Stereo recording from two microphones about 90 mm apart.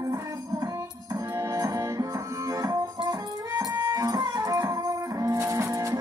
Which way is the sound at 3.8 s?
45° right (ahead or behind).